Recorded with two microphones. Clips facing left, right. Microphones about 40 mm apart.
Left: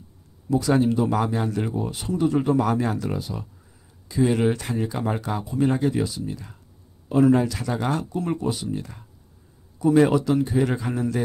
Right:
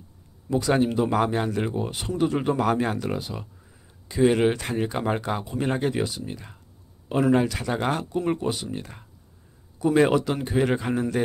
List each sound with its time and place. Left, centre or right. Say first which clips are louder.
0.5 s speech: left 2 dB; right